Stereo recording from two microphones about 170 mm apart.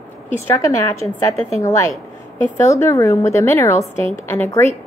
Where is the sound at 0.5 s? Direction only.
15° left (ahead or behind).